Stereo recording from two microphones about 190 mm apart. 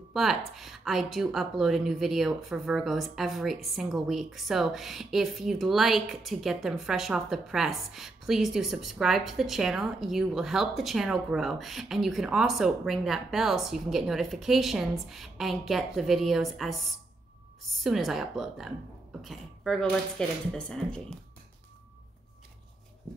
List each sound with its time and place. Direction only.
0.1 s speech: centre (ahead or behind)